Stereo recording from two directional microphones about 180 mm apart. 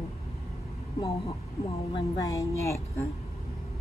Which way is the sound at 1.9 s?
20° left (ahead or behind).